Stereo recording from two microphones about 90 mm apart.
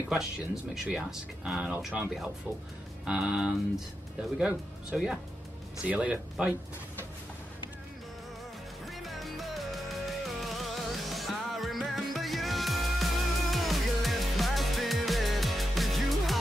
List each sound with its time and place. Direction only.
0.1 s speech: 5° right (ahead or behind)
8.8 s music: centre (ahead or behind)